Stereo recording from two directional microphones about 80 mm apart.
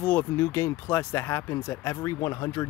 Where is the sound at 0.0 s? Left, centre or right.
Left.